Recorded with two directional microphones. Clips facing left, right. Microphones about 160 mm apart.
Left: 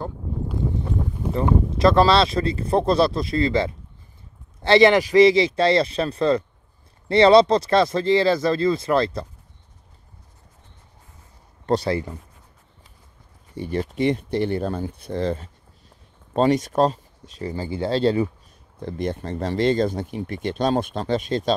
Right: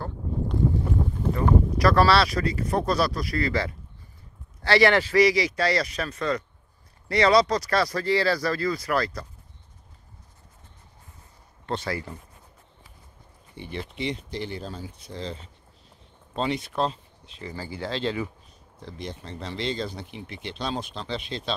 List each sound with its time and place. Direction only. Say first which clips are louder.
1.3 s speech: left 2 dB; 25° left (ahead or behind)
11.6 s speech: left 9 dB; 40° left (ahead or behind)
13.6 s speech: left 9 dB; 45° left (ahead or behind)
17.6 s speech: left 8 dB; 25° left (ahead or behind)
18.8 s speech: left 10 dB; 55° left (ahead or behind)